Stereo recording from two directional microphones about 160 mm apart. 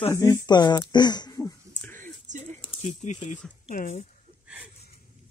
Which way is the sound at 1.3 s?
15° left (ahead or behind).